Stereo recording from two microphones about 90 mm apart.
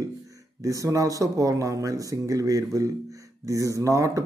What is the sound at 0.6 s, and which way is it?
Speech, 40° right (ahead or behind).